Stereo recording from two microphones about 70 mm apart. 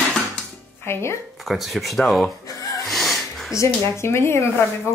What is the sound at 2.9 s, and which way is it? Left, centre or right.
Music, centre.